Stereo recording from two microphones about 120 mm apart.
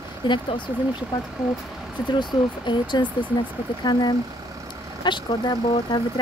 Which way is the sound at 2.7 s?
40° left (ahead or behind).